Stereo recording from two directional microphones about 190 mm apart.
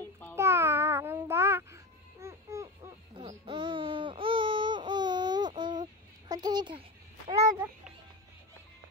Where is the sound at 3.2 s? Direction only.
25° right (ahead or behind).